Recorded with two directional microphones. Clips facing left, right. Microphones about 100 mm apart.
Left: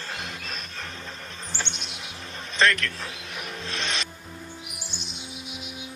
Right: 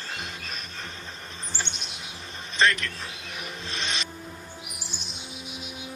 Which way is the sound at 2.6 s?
5° right (ahead or behind).